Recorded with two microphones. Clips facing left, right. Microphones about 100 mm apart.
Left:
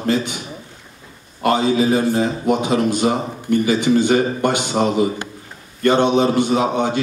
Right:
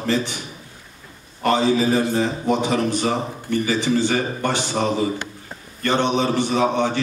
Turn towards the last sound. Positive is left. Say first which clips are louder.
# left 2 dB
turn(degrees=15)  # may be behind; listen again after turning